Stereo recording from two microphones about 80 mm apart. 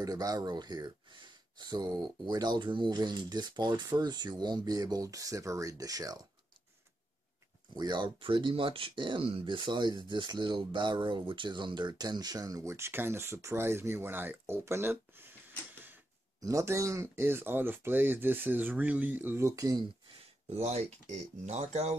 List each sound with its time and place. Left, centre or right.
0.0 s speech: right
7.7 s speech: right
11.9 s speech: right
16.3 s speech: right
19.4 s speech: right